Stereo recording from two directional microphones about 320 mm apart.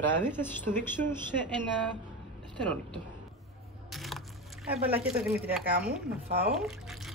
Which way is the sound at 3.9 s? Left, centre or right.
Centre.